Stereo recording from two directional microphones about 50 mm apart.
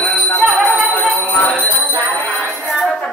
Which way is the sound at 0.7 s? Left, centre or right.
Left.